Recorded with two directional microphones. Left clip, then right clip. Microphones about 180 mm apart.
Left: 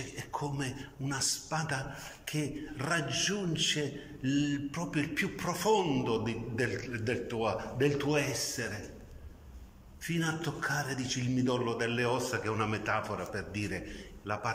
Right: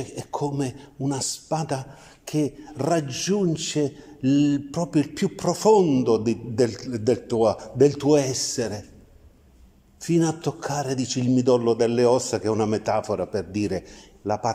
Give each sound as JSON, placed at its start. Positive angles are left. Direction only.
{"t": 0.1, "sound": "a man's voice", "side_deg": -55}
{"t": 10.0, "sound": "a man's voice", "side_deg": -55}